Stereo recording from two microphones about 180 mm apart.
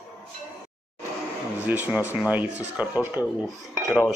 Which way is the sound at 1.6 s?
10° right (ahead or behind).